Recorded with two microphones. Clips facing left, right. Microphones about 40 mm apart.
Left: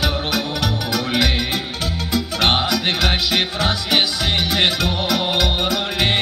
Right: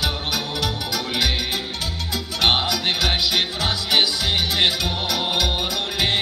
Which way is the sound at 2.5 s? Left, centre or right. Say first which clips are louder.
Left 2 dB; centre.